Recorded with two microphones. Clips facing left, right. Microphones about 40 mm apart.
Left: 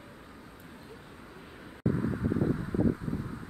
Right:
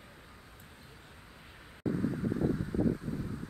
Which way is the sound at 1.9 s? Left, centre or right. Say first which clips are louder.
Left 2 dB; centre.